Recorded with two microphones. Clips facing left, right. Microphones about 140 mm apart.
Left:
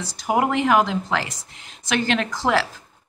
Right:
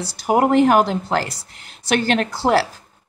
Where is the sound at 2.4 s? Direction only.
45° right (ahead or behind).